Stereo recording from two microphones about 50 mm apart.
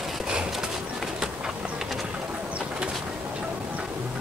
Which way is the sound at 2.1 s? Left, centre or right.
Right.